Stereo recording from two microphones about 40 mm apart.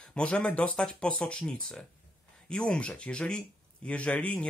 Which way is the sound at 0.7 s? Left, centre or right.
Centre.